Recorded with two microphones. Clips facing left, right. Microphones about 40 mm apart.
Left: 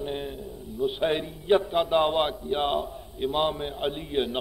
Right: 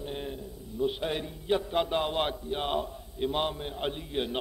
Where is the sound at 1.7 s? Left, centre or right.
Centre.